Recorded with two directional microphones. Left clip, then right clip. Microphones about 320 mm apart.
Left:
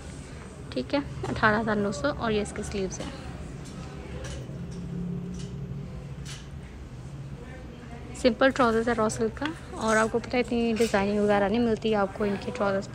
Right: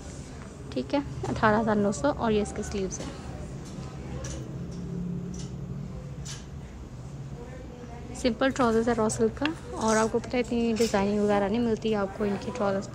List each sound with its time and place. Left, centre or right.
0.7 s a woman's voice: centre
8.2 s a woman's voice: centre